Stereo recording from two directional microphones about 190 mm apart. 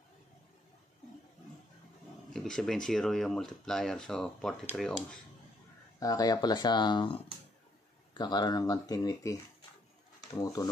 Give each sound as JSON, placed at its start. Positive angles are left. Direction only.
{"t": 2.3, "sound": "speech", "side_deg": 5}
{"t": 5.9, "sound": "speech", "side_deg": 20}